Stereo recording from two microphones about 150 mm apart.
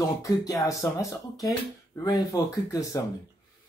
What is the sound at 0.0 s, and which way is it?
Speech, 25° left (ahead or behind).